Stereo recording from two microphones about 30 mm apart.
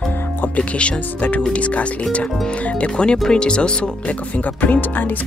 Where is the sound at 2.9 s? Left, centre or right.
Left.